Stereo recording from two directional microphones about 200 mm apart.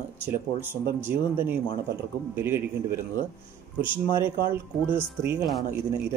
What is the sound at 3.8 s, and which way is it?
Speech, 25° left (ahead or behind).